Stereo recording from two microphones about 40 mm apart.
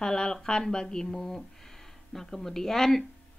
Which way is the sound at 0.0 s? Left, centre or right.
Centre.